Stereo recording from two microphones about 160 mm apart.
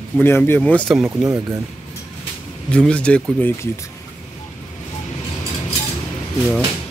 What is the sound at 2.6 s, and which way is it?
Speech, 5° left (ahead or behind).